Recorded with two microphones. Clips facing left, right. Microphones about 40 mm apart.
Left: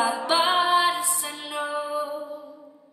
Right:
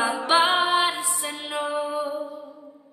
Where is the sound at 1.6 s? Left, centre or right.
Right.